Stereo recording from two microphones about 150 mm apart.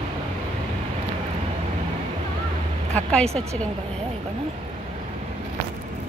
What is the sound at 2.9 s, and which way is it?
Speech, 5° left (ahead or behind).